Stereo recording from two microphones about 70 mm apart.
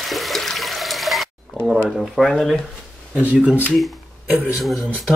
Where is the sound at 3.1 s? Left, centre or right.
Centre.